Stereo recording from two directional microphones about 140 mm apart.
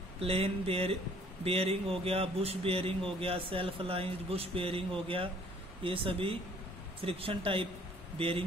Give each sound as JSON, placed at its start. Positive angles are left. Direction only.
{"t": 0.2, "sound": "a man's voice", "side_deg": -45}